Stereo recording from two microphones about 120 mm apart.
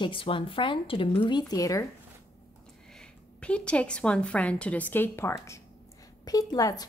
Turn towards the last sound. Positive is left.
turn(degrees=30)  # may be behind; listen again after turning